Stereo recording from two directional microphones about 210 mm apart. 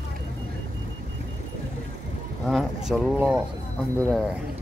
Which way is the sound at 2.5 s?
Centre (ahead or behind).